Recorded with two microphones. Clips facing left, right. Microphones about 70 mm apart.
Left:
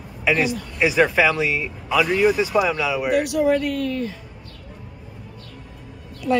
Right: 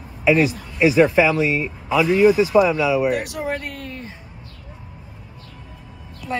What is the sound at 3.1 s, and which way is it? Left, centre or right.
A woman's voice, right.